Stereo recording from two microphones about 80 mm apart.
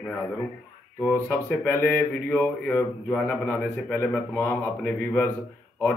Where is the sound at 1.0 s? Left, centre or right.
Left.